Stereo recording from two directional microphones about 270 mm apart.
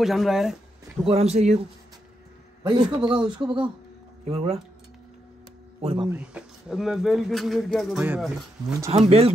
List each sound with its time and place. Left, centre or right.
0.0 s speech: centre
1.0 s a man's voice: right
3.4 s speech: centre
4.2 s speech: right
5.8 s speech: right
6.0 s speech: centre
8.7 s speech: centre